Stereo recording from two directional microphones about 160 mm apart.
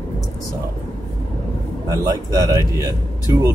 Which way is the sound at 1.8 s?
20° right (ahead or behind).